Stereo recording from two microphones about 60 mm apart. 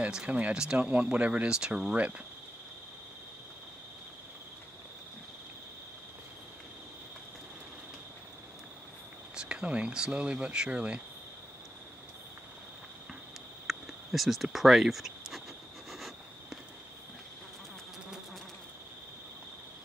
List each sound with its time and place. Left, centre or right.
0.0 s speech: centre
9.3 s speech: centre
13.7 s a sound: centre